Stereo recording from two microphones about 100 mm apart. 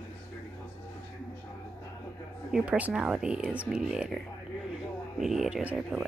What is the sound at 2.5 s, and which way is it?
Speech, 15° right (ahead or behind).